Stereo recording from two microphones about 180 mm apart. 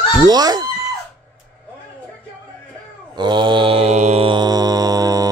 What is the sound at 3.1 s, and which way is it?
Mantra, 25° right (ahead or behind).